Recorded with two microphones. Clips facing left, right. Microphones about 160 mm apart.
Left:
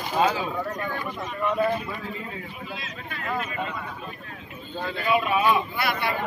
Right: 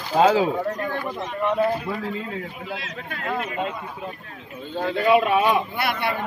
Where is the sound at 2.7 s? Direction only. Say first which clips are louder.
Right 4 dB; 70° right (ahead or behind).